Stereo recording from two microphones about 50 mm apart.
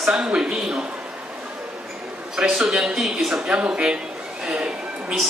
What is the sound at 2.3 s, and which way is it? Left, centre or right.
Speech, centre.